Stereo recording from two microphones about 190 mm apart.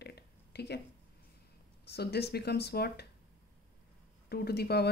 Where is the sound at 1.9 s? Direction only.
60° left (ahead or behind).